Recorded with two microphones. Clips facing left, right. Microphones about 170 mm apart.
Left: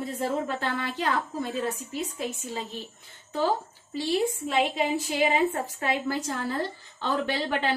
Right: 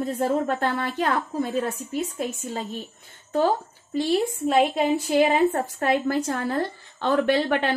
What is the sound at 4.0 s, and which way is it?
A woman's voice, 50° right (ahead or behind).